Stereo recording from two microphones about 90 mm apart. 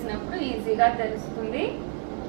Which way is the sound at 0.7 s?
15° right (ahead or behind).